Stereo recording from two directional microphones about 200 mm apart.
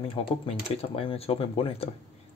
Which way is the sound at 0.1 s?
30° left (ahead or behind).